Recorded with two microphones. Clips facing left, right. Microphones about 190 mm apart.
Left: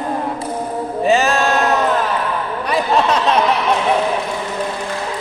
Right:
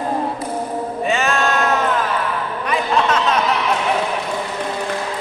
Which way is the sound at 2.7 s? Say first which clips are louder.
Left 2 dB; 35° left (ahead or behind).